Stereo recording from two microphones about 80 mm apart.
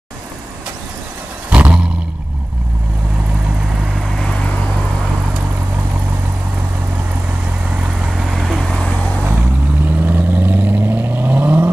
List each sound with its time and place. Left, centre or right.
1.5 s roar: centre
4.2 s vehicle: centre
7.7 s vehicle: centre
9.9 s vehicle: right